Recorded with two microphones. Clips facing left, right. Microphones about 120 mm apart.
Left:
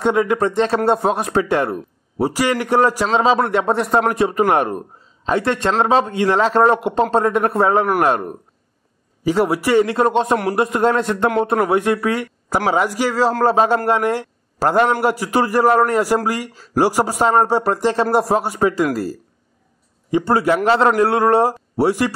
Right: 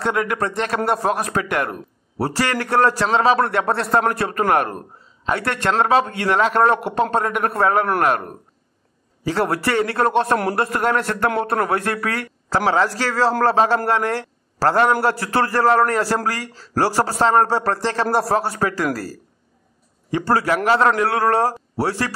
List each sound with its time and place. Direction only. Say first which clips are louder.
0.0 s a man's voice: left 5 dB; 20° left (ahead or behind)
9.2 s a man's voice: left 3 dB; 15° left (ahead or behind)
20.1 s a man's voice: left 3 dB; 20° left (ahead or behind)